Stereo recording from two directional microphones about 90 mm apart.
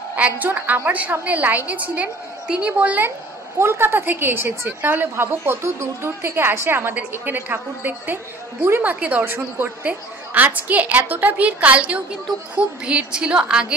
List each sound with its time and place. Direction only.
0.1 s a woman's voice: 20° right (ahead or behind)
3.5 s a woman's voice: 25° right (ahead or behind); by 13.7 s 10° right (ahead or behind)